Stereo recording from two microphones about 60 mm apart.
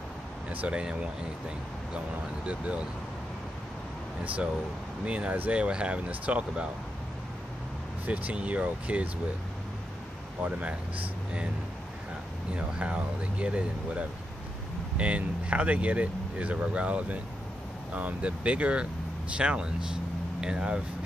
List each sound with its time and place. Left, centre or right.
0.5 s speech: right
2.4 s speech: centre
5.0 s speech: right
8.1 s speech: right
10.4 s speech: right
12.5 s speech: centre